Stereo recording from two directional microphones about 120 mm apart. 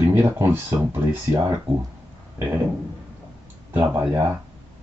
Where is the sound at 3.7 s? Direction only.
15° right (ahead or behind).